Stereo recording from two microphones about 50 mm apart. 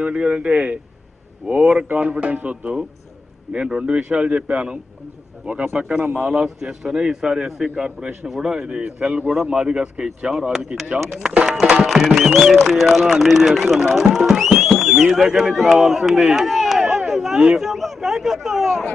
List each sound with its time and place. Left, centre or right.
0.0 s a man's voice: centre
3.5 s a man's voice: centre
5.8 s a man's voice: right
6.2 s a man's voice: centre
9.3 s a man's voice: centre
16.4 s a sound: centre